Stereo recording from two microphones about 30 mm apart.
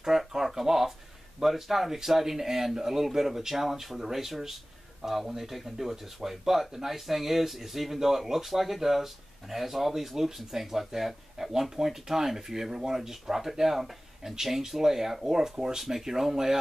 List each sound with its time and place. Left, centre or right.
0.0 s speech: centre